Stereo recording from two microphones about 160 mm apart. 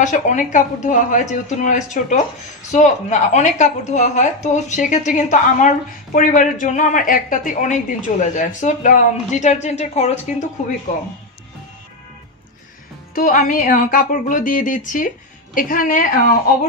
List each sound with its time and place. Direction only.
0.0 s a woman's voice: 50° left (ahead or behind)
13.1 s speech: 60° left (ahead or behind)